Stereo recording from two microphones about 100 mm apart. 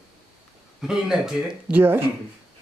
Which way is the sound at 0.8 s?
5° right (ahead or behind).